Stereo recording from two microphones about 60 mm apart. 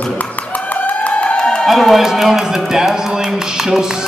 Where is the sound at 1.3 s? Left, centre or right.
Centre.